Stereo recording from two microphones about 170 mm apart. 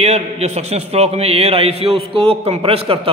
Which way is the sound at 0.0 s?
40° right (ahead or behind).